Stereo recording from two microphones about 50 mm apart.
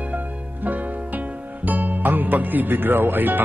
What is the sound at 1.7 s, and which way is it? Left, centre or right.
Speech, right.